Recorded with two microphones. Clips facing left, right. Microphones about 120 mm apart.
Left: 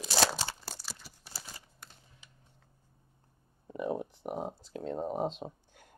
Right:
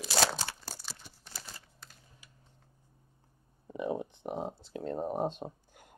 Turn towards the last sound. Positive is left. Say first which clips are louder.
# even
turn(degrees=-5)  # may be behind; listen again after turning